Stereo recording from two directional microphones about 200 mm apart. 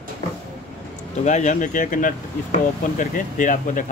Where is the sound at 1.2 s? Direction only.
35° left (ahead or behind).